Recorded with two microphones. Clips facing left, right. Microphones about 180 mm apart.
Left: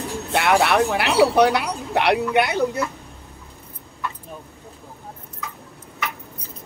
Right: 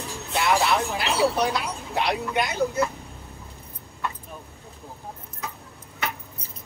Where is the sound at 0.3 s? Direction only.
65° left (ahead or behind).